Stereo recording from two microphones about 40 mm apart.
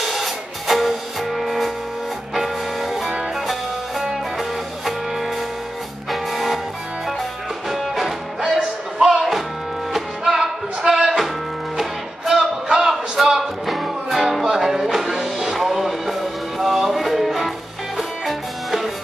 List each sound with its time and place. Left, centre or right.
0.0 s music: centre
7.7 s music: centre
8.4 s music: right
9.1 s music: centre
11.8 s music: centre
12.6 s a sound: centre
13.7 s music: centre